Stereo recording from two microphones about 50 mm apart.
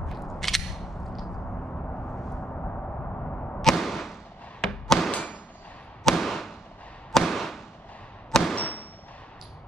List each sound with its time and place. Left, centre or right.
0.0 s a sound: centre
1.6 s vehicle: left
2.0 s vehicle: centre
2.4 s arrow: left
3.6 s a sound: centre
6.0 s fireworks: centre
8.3 s basketball bounce: centre
8.5 s fireworks: left